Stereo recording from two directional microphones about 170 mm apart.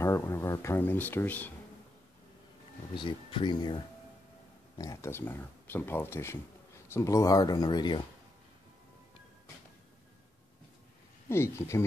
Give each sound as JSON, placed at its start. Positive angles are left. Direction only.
{"t": 0.0, "sound": "speech", "side_deg": 15}
{"t": 2.9, "sound": "speech", "side_deg": 30}
{"t": 11.2, "sound": "speech", "side_deg": 15}